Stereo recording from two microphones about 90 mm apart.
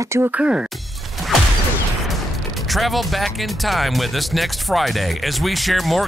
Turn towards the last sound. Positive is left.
turn(degrees=0)  # may be behind; listen again after turning